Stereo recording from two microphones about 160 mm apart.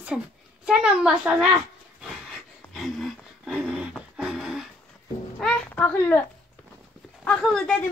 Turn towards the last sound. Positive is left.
turn(degrees=5)  # may be behind; listen again after turning